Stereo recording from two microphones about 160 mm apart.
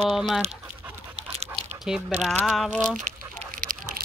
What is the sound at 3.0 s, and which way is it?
Duck, 55° right (ahead or behind).